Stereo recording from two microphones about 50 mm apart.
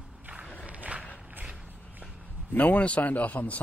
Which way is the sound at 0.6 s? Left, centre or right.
Right.